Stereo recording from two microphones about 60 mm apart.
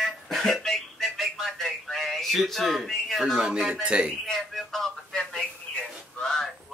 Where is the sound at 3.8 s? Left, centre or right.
Centre.